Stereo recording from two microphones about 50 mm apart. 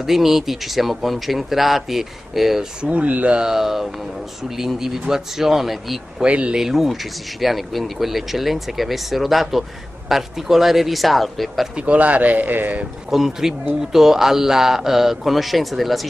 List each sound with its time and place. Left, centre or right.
0.0 s speech: centre
2.8 s speech: right
3.3 s a man's voice: centre
6.2 s speech: right
6.5 s speech: centre
11.7 s speech: right
13.1 s a man's voice: centre